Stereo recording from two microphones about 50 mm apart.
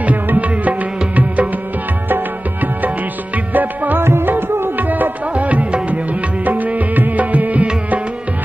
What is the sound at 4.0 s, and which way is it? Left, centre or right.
Music, right.